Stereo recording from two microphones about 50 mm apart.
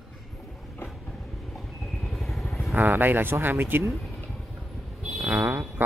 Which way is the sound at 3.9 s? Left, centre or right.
Centre.